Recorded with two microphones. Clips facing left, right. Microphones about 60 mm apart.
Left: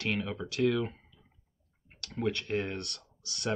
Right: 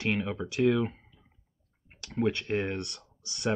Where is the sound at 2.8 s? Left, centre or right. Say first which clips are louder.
Right 3 dB; centre.